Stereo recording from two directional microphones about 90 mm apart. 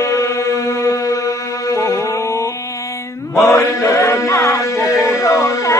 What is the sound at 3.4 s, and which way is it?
Chant, 35° left (ahead or behind).